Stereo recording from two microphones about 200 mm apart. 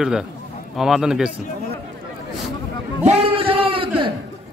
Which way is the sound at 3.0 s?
30° right (ahead or behind).